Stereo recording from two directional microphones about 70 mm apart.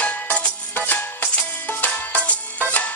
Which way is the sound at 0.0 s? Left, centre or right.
Left.